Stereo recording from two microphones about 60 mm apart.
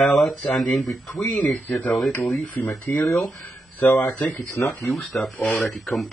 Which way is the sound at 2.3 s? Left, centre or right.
Centre.